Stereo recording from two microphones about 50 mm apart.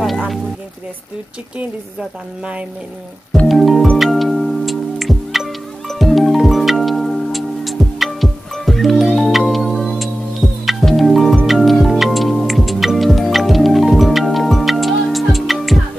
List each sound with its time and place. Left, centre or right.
2.0 s speech: centre
3.4 s music: centre